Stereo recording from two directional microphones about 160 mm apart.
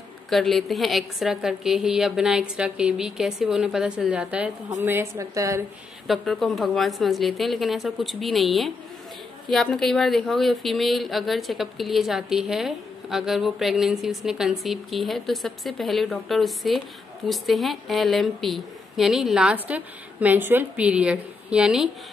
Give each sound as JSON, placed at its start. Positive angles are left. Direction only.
{"t": 0.3, "sound": "a woman's voice", "side_deg": 0}
{"t": 6.0, "sound": "speech", "side_deg": 0}